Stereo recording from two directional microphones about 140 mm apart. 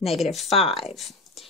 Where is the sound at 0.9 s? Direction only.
Centre (ahead or behind).